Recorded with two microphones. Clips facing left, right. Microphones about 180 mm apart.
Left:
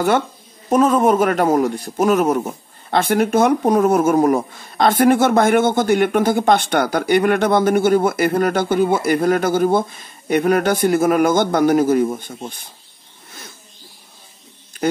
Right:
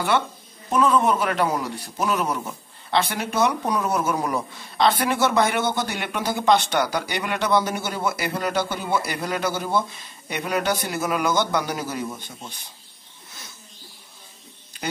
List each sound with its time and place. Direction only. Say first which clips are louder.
0.7 s a man's voice: left 5 dB; 45° left (ahead or behind)